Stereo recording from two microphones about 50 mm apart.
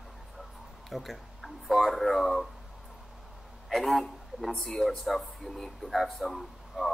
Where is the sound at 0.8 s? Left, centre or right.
Centre.